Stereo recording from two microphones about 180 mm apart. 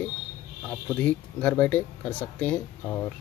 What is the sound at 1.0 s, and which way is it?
Speech, 10° left (ahead or behind).